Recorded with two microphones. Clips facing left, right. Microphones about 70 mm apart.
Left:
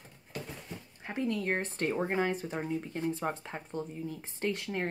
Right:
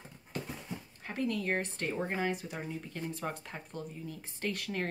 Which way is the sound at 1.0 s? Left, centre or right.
Left.